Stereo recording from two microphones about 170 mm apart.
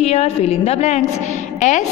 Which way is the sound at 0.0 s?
40° left (ahead or behind).